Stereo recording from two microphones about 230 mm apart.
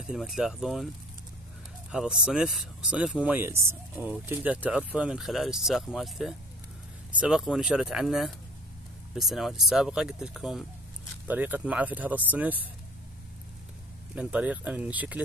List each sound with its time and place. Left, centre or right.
0.0 s speech: centre
1.9 s speech: centre
14.1 s speech: centre